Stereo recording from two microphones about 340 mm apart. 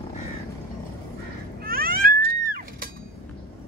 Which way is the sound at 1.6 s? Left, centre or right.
Right.